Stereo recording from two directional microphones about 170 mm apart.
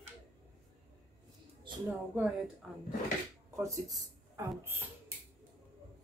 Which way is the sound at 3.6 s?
20° right (ahead or behind).